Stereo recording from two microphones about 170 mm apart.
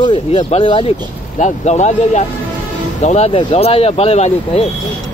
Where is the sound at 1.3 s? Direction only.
45° left (ahead or behind).